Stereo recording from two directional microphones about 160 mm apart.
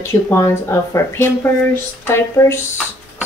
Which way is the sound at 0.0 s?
15° left (ahead or behind).